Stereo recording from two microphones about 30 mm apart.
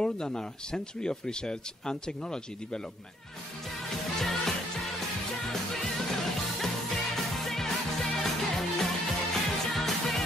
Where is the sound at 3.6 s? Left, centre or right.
Centre.